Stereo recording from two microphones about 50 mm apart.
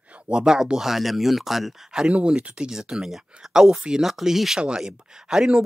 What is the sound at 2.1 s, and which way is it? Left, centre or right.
Speech, right.